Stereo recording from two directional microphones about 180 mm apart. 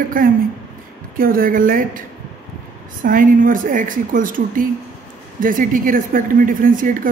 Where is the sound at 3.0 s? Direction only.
50° right (ahead or behind).